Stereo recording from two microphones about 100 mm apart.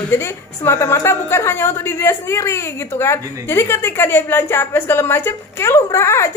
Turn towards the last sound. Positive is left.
turn(degrees=25)  # may be behind; listen again after turning